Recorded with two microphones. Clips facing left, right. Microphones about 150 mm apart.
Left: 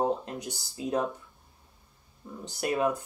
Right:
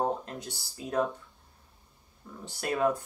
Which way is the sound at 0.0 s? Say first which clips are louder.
Left 2 dB; 20° left (ahead or behind).